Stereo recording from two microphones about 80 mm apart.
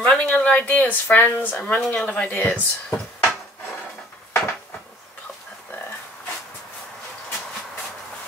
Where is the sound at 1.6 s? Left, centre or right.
Centre.